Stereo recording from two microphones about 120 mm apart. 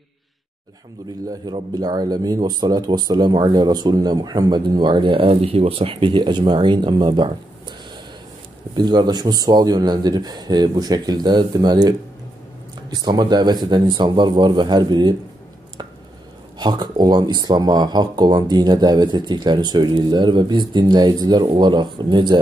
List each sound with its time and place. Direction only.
1.4 s speech: 35° right (ahead or behind)
8.7 s speech: 35° right (ahead or behind)
12.9 s speech: 35° right (ahead or behind)
16.5 s speech: 35° right (ahead or behind)